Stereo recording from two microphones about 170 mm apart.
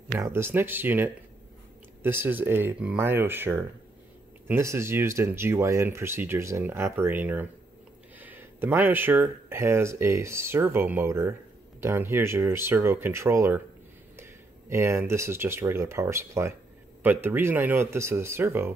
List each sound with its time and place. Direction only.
0.2 s speech: 15° right (ahead or behind)